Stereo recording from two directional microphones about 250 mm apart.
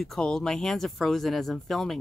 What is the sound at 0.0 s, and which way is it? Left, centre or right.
Speech, centre.